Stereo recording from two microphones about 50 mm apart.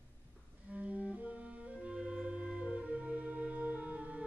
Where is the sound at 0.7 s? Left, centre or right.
Right.